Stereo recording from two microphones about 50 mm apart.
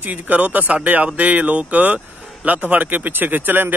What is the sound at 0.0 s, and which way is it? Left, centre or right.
Speech, right.